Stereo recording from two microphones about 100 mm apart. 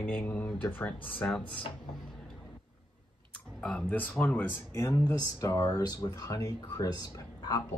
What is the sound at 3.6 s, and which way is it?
Speech, 10° left (ahead or behind).